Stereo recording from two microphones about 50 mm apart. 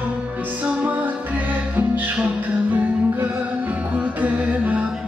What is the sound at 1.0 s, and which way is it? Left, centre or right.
Music, right.